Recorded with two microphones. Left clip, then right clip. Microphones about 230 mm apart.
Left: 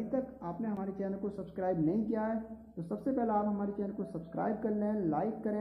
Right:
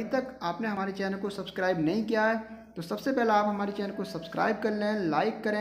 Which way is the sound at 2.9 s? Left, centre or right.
Right.